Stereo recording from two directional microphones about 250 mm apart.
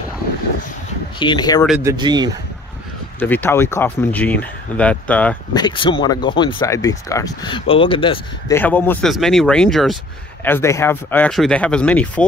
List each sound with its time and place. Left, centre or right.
1.2 s speech: centre
1.7 s speech: centre
3.2 s speech: centre
8.5 s speech: centre